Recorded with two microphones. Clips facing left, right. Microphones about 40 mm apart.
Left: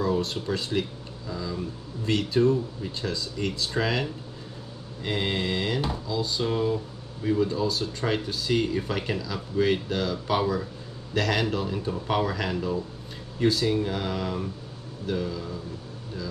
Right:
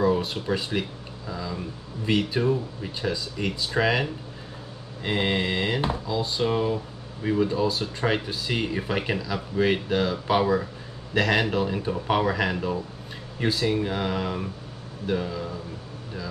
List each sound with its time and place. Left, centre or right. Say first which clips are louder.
0.0 s speech: right 3 dB; centre